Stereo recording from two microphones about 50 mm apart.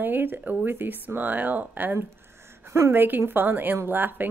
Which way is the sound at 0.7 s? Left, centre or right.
Right.